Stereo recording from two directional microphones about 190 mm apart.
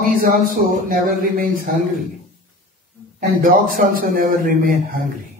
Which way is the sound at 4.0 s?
50° right (ahead or behind).